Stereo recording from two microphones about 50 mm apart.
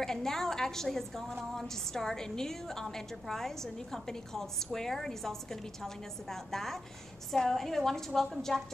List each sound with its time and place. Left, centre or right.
0.0 s a woman's voice: centre